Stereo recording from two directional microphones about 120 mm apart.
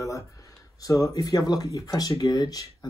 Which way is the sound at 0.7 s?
30° left (ahead or behind).